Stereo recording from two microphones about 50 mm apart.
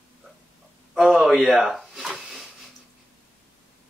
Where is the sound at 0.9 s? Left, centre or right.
Centre.